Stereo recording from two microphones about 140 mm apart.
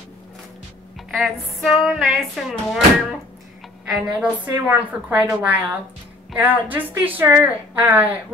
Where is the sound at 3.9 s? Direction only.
5° right (ahead or behind).